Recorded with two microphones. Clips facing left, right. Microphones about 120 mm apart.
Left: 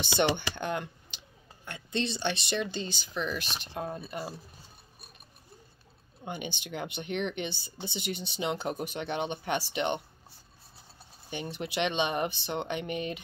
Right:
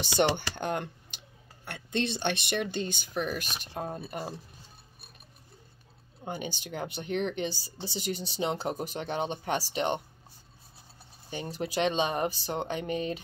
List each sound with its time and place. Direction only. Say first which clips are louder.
0.0 s speech: right 1 dB; 45° right (ahead or behind)
3.7 s speech: even; 35° right (ahead or behind)
4.0 s speech: right 1 dB; 45° right (ahead or behind)
6.2 s speech: right 1 dB; 40° right (ahead or behind)
11.5 s speech: right 2 dB; 40° right (ahead or behind)